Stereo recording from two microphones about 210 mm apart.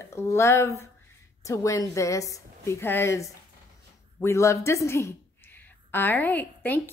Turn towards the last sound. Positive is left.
turn(degrees=10)  # may be behind; listen again after turning